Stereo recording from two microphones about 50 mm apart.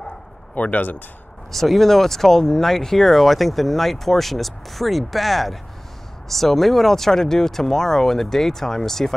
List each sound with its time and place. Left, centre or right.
0.6 s speech: left
1.5 s speech: centre